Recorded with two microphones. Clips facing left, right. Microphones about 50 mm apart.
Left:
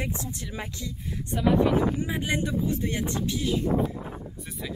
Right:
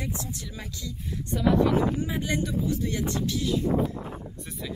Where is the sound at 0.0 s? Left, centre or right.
Left.